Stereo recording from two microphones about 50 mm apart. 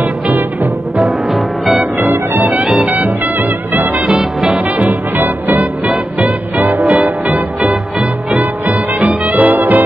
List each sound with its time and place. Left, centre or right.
0.9 s music: centre
2.0 s music: right
4.1 s music: centre
4.6 s music: right